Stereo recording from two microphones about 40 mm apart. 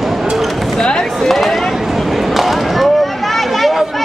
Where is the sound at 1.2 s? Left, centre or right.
Centre.